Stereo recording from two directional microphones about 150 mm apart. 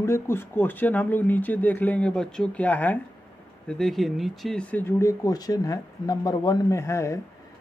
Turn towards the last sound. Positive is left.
turn(degrees=20)  # may be behind; listen again after turning